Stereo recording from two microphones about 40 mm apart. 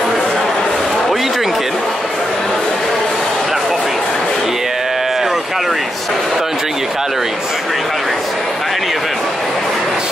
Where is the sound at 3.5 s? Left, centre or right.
Centre.